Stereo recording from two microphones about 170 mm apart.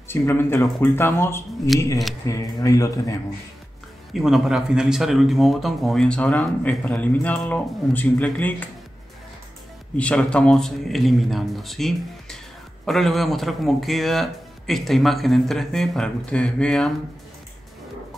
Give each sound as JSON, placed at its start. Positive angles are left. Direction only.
{"t": 0.1, "sound": "speech", "side_deg": 15}
{"t": 4.1, "sound": "speech", "side_deg": 0}
{"t": 9.9, "sound": "speech", "side_deg": 5}